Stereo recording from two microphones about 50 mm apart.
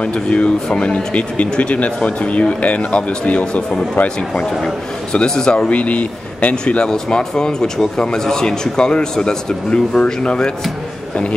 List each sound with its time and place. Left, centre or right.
0.0 s speech: left
5.1 s speech: centre
5.7 s speech: left
6.5 s speech: centre